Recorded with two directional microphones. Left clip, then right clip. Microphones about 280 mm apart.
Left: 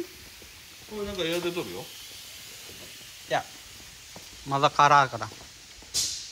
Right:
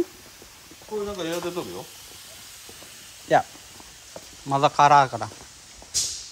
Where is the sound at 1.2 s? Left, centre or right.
Centre.